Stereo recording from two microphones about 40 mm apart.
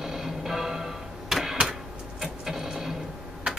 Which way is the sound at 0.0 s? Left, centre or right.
Centre.